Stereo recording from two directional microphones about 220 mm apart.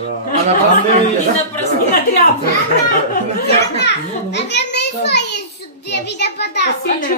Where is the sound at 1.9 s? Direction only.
40° left (ahead or behind).